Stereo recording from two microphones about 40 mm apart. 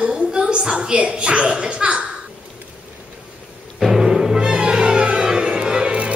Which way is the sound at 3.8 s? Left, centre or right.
Centre.